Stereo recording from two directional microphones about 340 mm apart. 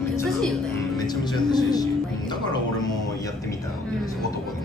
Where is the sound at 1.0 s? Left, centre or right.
Centre.